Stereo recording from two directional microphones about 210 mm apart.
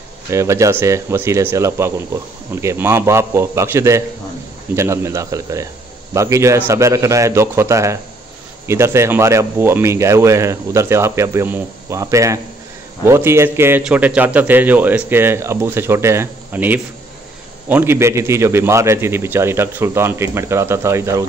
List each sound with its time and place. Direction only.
0.3 s a man's voice: 15° right (ahead or behind)